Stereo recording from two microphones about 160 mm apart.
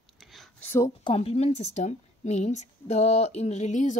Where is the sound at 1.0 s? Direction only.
35° left (ahead or behind).